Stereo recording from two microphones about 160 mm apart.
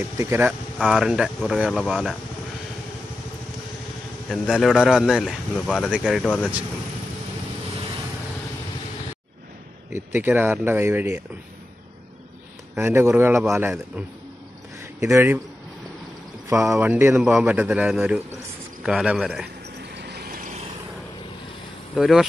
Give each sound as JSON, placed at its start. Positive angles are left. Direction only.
{"t": 0.2, "sound": "a man's voice", "side_deg": -15}
{"t": 0.7, "sound": "a man's voice", "side_deg": 0}
{"t": 4.3, "sound": "a man's voice", "side_deg": 0}
{"t": 9.9, "sound": "a man's voice", "side_deg": -10}
{"t": 12.7, "sound": "a man's voice", "side_deg": -15}
{"t": 16.4, "sound": "a man's voice", "side_deg": -20}
{"t": 19.9, "sound": "vehicle", "side_deg": -90}
{"t": 21.9, "sound": "speech", "side_deg": 0}